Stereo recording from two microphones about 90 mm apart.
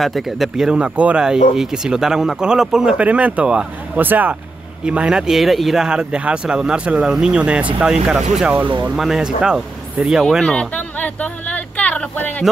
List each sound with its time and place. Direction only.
0.0 s speech: centre (ahead or behind)
10.4 s speech: 10° left (ahead or behind)